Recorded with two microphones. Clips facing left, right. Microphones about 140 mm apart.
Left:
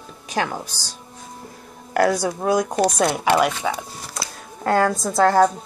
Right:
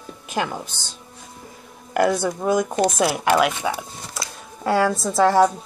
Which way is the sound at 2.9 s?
5° right (ahead or behind).